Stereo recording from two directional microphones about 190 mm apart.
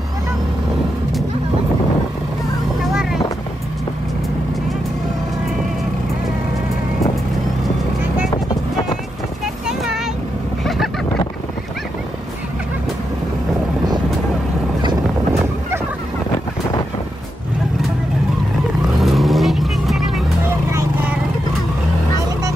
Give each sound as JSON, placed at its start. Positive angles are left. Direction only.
{"t": 2.9, "sound": "vehicle", "side_deg": -5}
{"t": 10.6, "sound": "vehicle", "side_deg": 0}
{"t": 14.8, "sound": "fowl", "side_deg": -20}
{"t": 18.9, "sound": "vehicle", "side_deg": 0}